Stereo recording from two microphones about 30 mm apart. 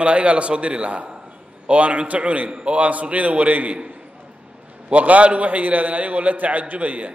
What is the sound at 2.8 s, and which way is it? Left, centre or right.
A man's voice, right.